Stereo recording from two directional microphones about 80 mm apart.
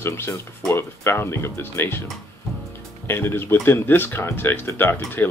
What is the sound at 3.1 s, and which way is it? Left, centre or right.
Speech, left.